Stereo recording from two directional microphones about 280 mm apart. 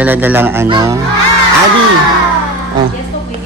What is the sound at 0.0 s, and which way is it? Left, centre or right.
Speech, centre.